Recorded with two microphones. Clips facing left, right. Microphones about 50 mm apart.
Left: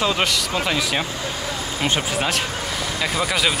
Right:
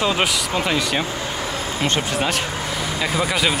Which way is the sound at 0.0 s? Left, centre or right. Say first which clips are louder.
Right 1 dB; centre.